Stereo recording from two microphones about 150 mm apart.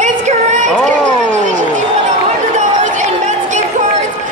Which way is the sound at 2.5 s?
55° right (ahead or behind).